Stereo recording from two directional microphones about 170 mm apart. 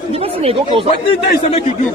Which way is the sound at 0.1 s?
35° right (ahead or behind).